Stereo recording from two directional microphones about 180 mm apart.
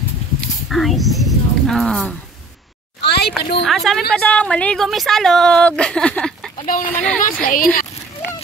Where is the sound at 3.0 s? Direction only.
65° left (ahead or behind).